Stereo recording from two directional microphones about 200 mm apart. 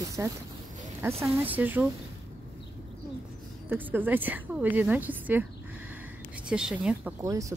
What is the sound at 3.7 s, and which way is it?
A woman's voice, 10° right (ahead or behind).